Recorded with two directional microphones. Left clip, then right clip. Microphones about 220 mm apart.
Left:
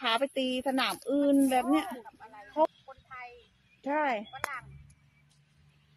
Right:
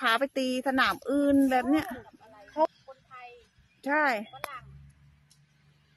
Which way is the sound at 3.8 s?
15° right (ahead or behind).